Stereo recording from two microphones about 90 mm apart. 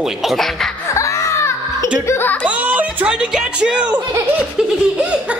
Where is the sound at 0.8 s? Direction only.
35° left (ahead or behind).